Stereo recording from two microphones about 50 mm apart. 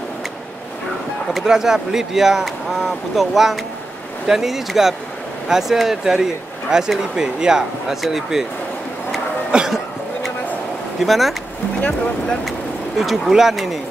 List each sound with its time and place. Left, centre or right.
1.4 s speech: centre
9.5 s cough: centre
11.0 s speech: centre
12.4 s vehicle: centre
13.3 s speech: centre